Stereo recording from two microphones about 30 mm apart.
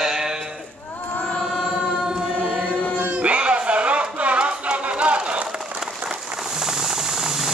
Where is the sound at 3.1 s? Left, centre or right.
Right.